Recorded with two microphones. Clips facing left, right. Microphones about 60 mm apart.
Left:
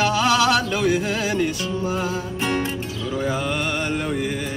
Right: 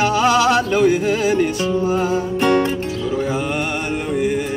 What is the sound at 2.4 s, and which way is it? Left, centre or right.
Music, right.